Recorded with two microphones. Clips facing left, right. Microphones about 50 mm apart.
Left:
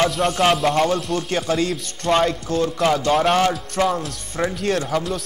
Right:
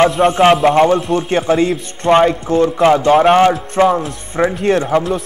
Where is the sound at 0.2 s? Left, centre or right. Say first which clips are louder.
Right 8 dB; right.